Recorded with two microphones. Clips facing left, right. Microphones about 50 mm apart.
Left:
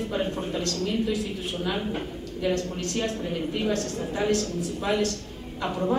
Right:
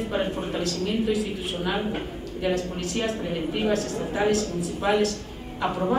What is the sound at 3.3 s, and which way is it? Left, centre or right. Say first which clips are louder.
Speech: right 2 dB; right.